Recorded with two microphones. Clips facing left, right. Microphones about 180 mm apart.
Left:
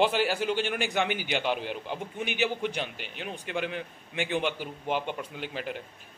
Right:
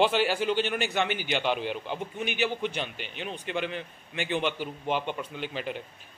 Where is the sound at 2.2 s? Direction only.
15° left (ahead or behind).